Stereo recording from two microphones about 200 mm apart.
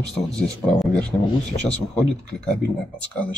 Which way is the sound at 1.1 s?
10° left (ahead or behind).